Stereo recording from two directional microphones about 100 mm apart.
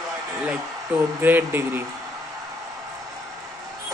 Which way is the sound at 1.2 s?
20° right (ahead or behind).